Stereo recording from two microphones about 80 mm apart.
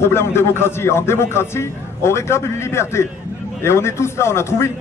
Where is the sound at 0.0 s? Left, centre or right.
Left.